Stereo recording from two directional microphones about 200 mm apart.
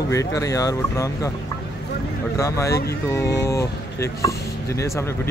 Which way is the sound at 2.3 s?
15° left (ahead or behind).